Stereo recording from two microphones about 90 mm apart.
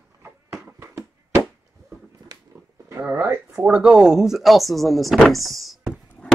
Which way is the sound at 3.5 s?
10° right (ahead or behind).